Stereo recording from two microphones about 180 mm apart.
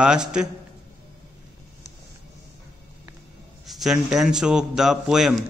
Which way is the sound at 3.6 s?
Centre (ahead or behind).